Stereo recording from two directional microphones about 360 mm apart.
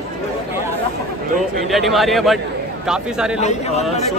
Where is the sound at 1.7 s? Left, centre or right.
Centre.